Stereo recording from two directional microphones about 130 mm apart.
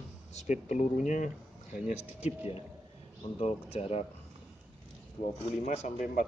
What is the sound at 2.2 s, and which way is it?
Speech, 50° left (ahead or behind).